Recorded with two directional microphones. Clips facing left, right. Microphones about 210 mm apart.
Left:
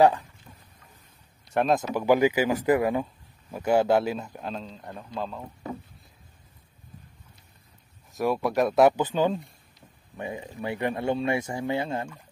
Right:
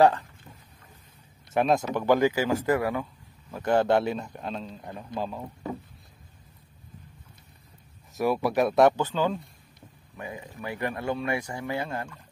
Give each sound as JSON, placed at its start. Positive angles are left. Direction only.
{"t": 0.0, "sound": "speech", "side_deg": 10}
{"t": 1.5, "sound": "speech", "side_deg": 0}
{"t": 3.5, "sound": "a man's voice", "side_deg": 10}
{"t": 8.1, "sound": "a man's voice", "side_deg": 0}
{"t": 8.9, "sound": "speech", "side_deg": 15}